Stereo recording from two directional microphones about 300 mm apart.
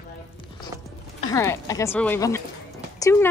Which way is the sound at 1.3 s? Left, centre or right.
Centre.